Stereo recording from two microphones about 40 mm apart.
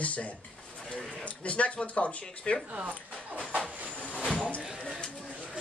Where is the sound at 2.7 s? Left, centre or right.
Right.